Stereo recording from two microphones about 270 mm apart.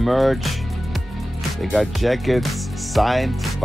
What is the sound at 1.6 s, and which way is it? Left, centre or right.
Speech, centre.